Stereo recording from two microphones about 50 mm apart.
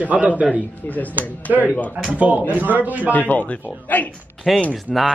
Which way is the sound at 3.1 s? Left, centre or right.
Left.